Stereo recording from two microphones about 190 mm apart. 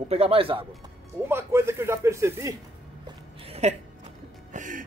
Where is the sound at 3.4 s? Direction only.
35° right (ahead or behind).